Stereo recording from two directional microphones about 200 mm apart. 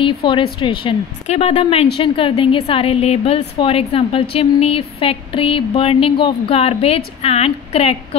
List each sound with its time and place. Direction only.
0.0 s a woman's voice: 25° left (ahead or behind)